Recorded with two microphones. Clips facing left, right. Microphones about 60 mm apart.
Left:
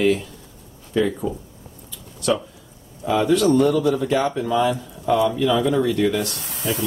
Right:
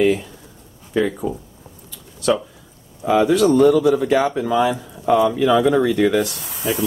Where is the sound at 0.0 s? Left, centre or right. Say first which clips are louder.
Right 2 dB; centre.